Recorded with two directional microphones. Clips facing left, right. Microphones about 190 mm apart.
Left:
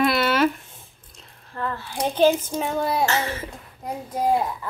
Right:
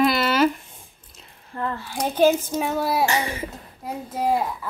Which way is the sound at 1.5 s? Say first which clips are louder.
Right 1 dB; 15° right (ahead or behind).